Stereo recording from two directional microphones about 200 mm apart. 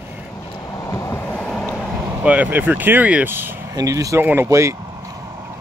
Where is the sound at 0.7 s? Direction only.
15° left (ahead or behind).